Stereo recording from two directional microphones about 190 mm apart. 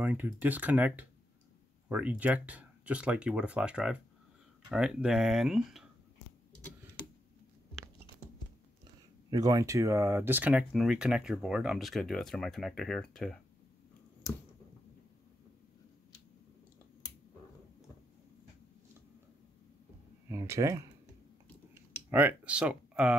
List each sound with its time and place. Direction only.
0.0 s speech: 10° right (ahead or behind)
9.3 s speech: 20° right (ahead or behind); by 13.4 s 5° left (ahead or behind)
20.2 s speech: 15° right (ahead or behind)
22.1 s speech: 10° right (ahead or behind)